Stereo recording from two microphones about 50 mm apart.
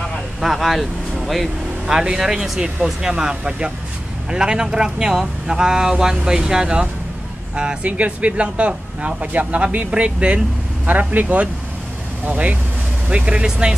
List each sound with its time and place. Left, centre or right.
0.4 s speech: centre
1.9 s speech: centre
7.5 s speech: right
10.9 s speech: right
13.1 s speech: right